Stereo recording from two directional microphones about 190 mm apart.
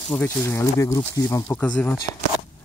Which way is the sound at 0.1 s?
10° left (ahead or behind).